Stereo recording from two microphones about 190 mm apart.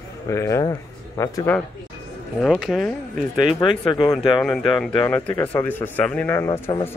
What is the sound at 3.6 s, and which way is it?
Speech, 25° left (ahead or behind).